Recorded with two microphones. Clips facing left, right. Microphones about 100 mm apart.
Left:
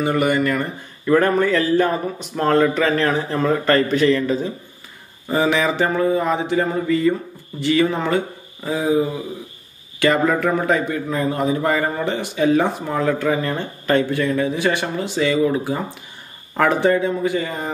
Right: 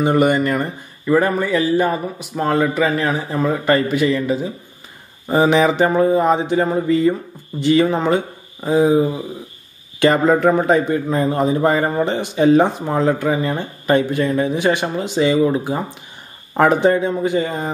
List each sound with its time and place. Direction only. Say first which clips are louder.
0.0 s a man's voice: right 3 dB; 25° right (ahead or behind)
1.0 s a man's voice: even; 5° right (ahead or behind); by 17.6 s 20° right (ahead or behind)